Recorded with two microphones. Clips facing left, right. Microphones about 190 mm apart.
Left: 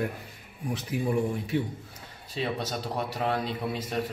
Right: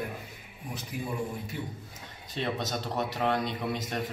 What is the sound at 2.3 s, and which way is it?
Speech, 5° left (ahead or behind).